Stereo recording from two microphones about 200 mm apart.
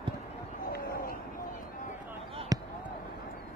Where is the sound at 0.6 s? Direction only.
50° left (ahead or behind).